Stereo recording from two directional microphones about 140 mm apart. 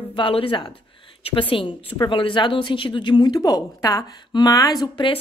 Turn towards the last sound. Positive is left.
turn(degrees=25)  # may be behind; listen again after turning